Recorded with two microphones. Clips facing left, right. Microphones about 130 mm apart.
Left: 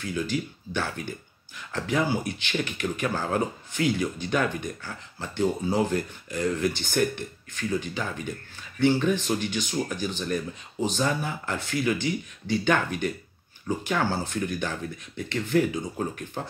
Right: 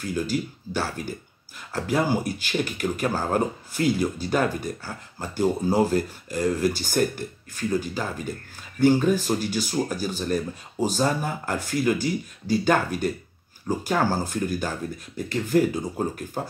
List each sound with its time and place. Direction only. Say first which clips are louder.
0.0 s speech: right 2 dB; 40° right (ahead or behind)